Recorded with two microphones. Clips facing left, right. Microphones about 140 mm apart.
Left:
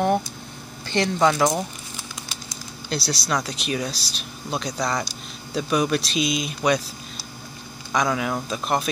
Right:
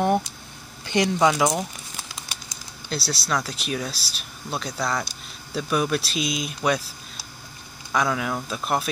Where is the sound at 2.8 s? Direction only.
5° right (ahead or behind).